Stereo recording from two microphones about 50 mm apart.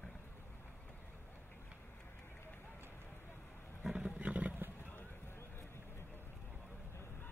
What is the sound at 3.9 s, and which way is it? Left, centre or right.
Roaring cats, right.